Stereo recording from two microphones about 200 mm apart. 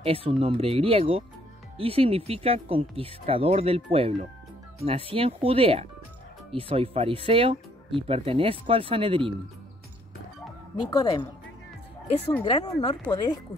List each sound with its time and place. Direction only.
0.0 s speech: 30° right (ahead or behind)
10.9 s speech: 20° left (ahead or behind)
12.4 s speech: 20° left (ahead or behind)